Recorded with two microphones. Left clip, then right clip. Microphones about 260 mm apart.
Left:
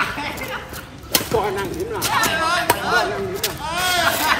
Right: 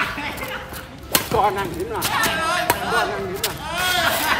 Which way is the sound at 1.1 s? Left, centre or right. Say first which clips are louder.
Right 2 dB; centre.